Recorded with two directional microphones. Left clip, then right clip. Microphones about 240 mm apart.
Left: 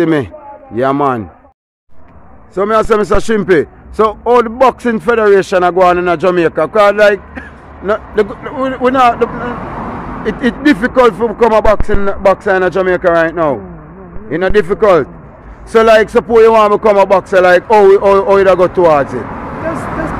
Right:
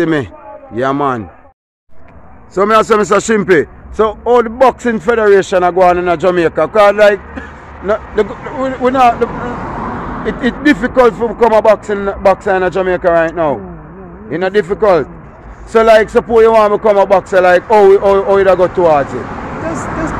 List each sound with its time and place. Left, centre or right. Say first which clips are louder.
0.0 s a man's voice: left 2 dB; centre
2.5 s a man's voice: right 1 dB; centre
3.9 s speech: left 1 dB; left